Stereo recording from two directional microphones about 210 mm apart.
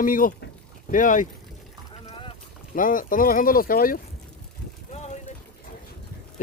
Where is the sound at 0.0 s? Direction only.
40° left (ahead or behind).